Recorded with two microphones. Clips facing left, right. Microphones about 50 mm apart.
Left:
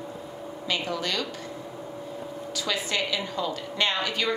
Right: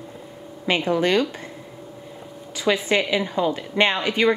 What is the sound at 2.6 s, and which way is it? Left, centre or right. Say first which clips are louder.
A woman's voice: right 8 dB; right.